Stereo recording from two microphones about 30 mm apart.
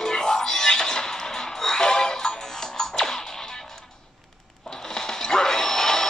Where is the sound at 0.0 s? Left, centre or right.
Left.